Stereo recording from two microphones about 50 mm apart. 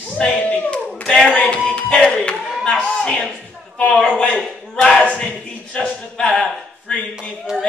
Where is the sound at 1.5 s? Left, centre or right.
Left.